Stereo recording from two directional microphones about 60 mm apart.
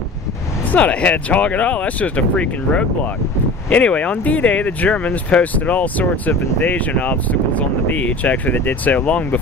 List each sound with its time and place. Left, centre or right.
0.7 s speech: left